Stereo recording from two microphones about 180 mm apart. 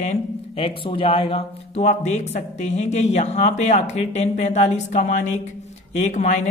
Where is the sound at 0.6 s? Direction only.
30° left (ahead or behind).